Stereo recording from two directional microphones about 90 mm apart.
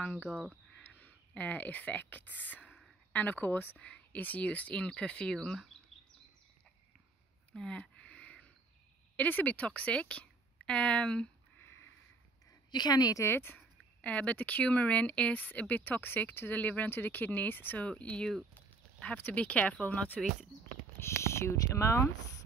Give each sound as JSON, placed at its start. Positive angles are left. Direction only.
{"t": 0.0, "sound": "speech", "side_deg": 15}
{"t": 7.5, "sound": "a sound", "side_deg": 10}
{"t": 9.1, "sound": "a woman's voice", "side_deg": 15}
{"t": 11.5, "sound": "sniff", "side_deg": 25}
{"t": 12.7, "sound": "a woman's voice", "side_deg": 50}
{"t": 13.2, "sound": "speech", "side_deg": 25}
{"t": 21.0, "sound": "speech", "side_deg": 30}